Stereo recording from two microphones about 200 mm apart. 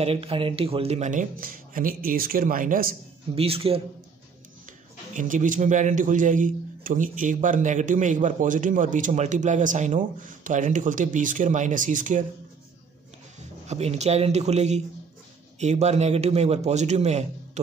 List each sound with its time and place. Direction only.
0.0 s speech: 30° right (ahead or behind); by 3.0 s 45° right (ahead or behind)
3.3 s speech: 30° right (ahead or behind)
5.1 s a man's voice: 40° right (ahead or behind)
13.7 s a man's voice: 35° right (ahead or behind)